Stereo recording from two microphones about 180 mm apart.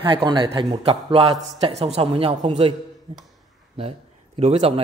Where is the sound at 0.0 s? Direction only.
25° right (ahead or behind).